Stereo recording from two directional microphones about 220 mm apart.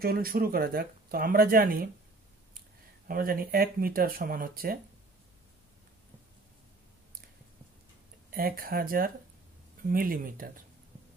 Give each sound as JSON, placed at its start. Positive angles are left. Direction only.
{"t": 0.0, "sound": "speech", "side_deg": -45}
{"t": 3.1, "sound": "speech", "side_deg": -40}
{"t": 8.3, "sound": "speech", "side_deg": -40}